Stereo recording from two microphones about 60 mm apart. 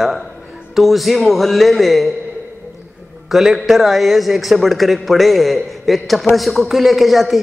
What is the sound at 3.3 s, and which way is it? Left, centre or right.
A man's voice, centre.